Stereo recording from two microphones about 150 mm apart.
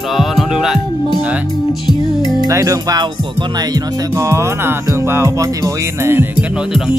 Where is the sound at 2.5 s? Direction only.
25° right (ahead or behind).